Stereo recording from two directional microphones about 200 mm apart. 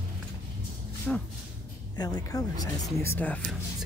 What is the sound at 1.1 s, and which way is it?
Speech, 5° left (ahead or behind).